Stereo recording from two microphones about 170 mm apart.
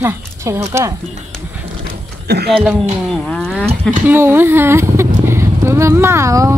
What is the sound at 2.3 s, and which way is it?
Speech, 75° right (ahead or behind).